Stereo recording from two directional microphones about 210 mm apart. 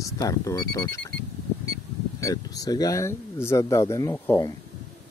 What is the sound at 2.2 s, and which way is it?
Speech, 15° left (ahead or behind).